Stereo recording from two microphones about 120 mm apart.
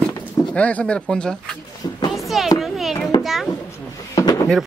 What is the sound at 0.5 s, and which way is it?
Speech, 10° left (ahead or behind).